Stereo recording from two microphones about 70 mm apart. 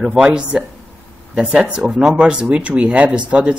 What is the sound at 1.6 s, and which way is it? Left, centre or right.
Speech, centre.